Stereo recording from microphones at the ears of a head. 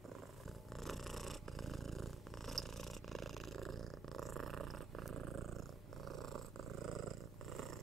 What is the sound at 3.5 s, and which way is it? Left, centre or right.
Purr, right.